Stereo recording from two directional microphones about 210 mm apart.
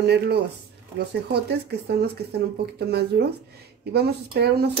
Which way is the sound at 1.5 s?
50° right (ahead or behind).